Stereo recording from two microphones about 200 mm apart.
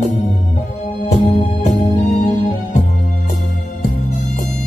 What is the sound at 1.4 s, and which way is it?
Music, 40° left (ahead or behind).